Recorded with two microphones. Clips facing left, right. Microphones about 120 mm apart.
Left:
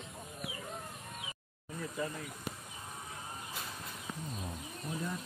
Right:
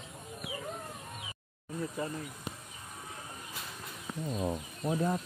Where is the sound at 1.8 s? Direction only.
30° right (ahead or behind).